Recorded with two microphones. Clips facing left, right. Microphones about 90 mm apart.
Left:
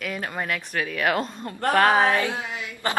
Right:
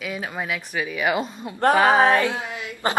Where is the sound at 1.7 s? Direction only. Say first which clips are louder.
Right 1 dB; 15° right (ahead or behind).